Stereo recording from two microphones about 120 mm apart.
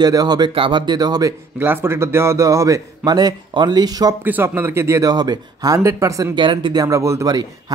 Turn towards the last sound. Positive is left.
turn(degrees=-35)  # may be behind; listen again after turning